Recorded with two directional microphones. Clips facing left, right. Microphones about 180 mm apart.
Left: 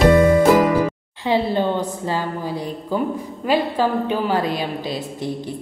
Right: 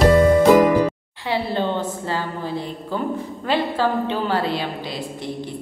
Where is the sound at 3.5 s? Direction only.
10° left (ahead or behind).